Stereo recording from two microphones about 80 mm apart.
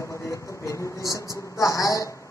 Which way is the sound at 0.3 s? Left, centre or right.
Left.